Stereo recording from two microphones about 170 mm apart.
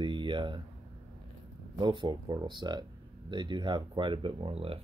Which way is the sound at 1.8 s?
30° right (ahead or behind).